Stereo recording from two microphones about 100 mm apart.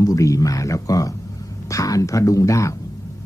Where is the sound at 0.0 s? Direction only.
35° left (ahead or behind).